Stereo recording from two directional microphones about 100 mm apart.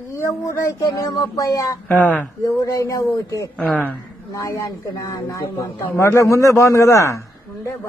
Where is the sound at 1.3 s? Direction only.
30° left (ahead or behind).